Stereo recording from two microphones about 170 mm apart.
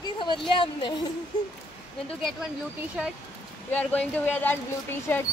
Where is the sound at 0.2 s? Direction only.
25° left (ahead or behind).